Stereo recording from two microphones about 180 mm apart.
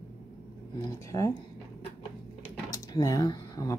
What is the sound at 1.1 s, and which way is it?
Speech, 20° left (ahead or behind).